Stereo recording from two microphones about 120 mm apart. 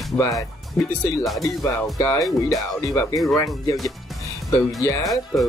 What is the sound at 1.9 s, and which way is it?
Speech, 25° left (ahead or behind).